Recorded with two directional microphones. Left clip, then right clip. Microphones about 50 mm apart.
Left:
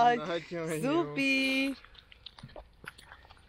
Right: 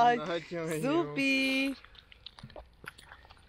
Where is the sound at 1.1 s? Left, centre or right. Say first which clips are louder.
Even; right.